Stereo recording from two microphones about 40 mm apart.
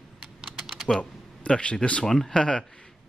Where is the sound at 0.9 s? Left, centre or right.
Left.